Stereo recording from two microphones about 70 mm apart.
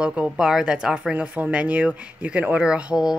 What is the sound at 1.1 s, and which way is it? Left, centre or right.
Speech, right.